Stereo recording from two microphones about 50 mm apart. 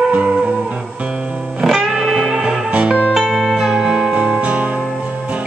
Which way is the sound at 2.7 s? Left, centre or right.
Right.